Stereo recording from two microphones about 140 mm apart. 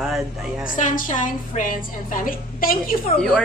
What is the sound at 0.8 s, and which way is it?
A woman's voice, 70° left (ahead or behind).